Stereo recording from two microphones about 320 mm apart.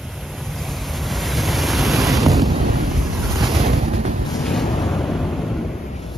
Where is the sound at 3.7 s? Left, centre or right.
Right.